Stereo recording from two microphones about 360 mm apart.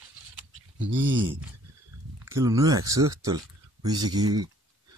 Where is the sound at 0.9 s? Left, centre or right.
Right.